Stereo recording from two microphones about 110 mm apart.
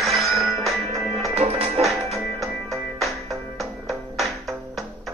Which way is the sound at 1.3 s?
70° right (ahead or behind).